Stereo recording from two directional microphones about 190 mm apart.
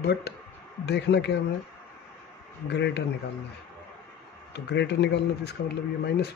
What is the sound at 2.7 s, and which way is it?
Speech, 65° left (ahead or behind).